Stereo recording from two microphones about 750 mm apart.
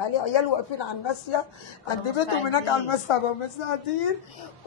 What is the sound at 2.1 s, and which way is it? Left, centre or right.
Speech, left.